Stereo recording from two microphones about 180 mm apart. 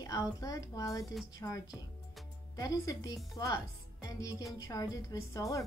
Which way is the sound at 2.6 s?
20° left (ahead or behind).